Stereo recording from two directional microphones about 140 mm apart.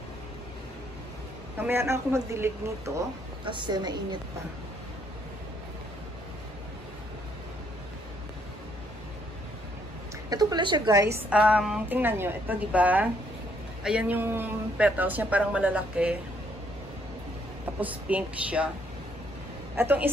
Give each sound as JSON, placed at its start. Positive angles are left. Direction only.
{"t": 1.6, "sound": "a woman's voice", "side_deg": -15}
{"t": 3.4, "sound": "a woman's voice", "side_deg": -35}
{"t": 10.3, "sound": "a woman's voice", "side_deg": -30}
{"t": 11.1, "sound": "speech", "side_deg": -10}
{"t": 17.7, "sound": "speech", "side_deg": -10}
{"t": 19.8, "sound": "speech", "side_deg": -15}